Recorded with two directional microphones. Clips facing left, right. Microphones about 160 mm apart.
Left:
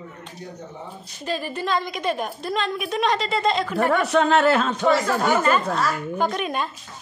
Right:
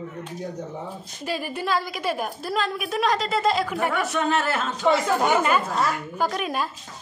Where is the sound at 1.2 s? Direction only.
10° right (ahead or behind).